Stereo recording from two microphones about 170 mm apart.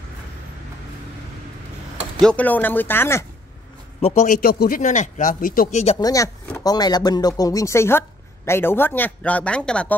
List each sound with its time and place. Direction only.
2.1 s speech: 5° left (ahead or behind)
4.0 s speech: 45° left (ahead or behind)
5.9 s speech: 20° left (ahead or behind)